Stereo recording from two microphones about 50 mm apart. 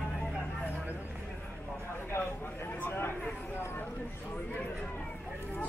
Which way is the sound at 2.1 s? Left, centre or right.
Left.